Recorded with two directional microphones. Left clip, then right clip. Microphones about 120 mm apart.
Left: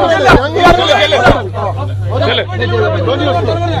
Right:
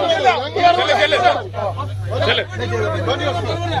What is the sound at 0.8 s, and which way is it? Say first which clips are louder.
Speech: left 5 dB; 45° right (ahead or behind).